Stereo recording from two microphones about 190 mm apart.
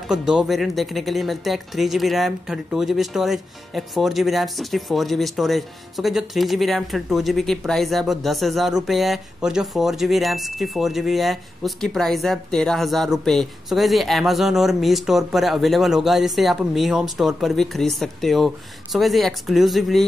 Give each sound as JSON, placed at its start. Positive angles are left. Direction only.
{"t": 0.1, "sound": "speech", "side_deg": -5}